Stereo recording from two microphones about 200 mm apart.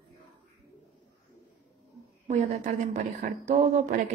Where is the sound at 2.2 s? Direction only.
35° right (ahead or behind).